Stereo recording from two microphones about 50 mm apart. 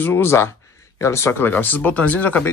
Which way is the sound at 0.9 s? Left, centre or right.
Left.